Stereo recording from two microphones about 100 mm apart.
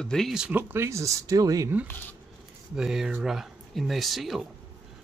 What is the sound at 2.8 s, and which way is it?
Speech, 5° right (ahead or behind).